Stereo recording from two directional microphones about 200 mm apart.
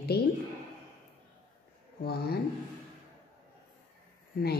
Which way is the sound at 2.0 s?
50° left (ahead or behind).